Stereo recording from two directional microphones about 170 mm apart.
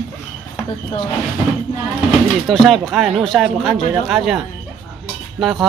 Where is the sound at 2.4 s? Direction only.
Centre (ahead or behind).